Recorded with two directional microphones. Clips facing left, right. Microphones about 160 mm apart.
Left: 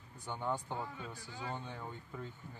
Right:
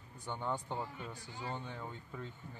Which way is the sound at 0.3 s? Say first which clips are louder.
Even; 10° left (ahead or behind).